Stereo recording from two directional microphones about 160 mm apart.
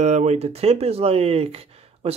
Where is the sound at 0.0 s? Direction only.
45° right (ahead or behind).